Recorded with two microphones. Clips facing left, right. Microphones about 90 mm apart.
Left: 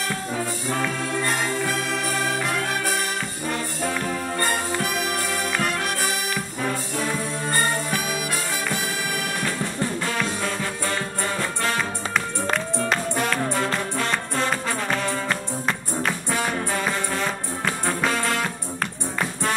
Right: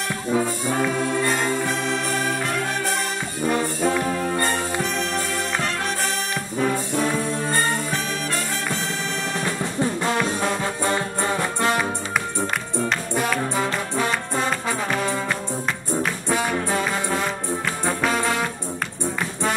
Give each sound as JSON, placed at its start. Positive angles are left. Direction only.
{"t": 1.3, "sound": "music", "side_deg": 5}
{"t": 3.5, "sound": "brass instrument", "side_deg": -10}
{"t": 4.9, "sound": "music", "side_deg": 5}
{"t": 9.4, "sound": "music", "side_deg": -15}
{"t": 12.9, "sound": "music", "side_deg": -5}